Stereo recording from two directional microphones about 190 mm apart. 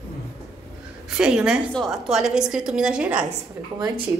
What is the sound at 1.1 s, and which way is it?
A woman's voice, 5° right (ahead or behind).